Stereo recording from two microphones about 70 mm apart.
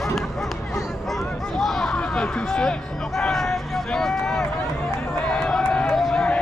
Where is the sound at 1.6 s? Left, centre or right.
Centre.